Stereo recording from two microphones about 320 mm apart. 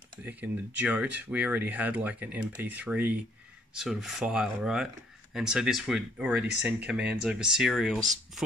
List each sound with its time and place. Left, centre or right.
0.2 s speech: centre